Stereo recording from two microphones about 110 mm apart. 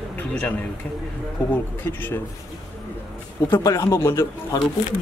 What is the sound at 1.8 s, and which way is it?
Speech, 15° left (ahead or behind).